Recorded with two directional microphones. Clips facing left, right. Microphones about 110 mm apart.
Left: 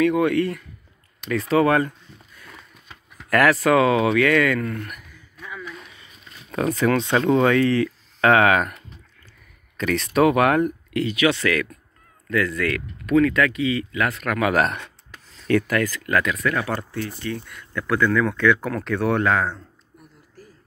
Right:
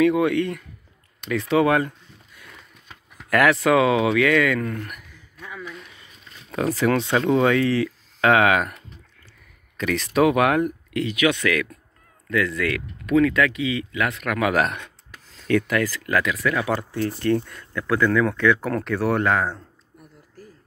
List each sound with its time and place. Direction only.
0.0 s speech: 10° right (ahead or behind)
3.3 s speech: 10° right (ahead or behind)
6.5 s speech: 5° right (ahead or behind)
15.0 s a sound: 5° right (ahead or behind)
15.7 s speech: 5° right (ahead or behind)
17.2 s speech: 55° right (ahead or behind)
17.7 s speech: 20° right (ahead or behind)
18.9 s speech: 10° right (ahead or behind)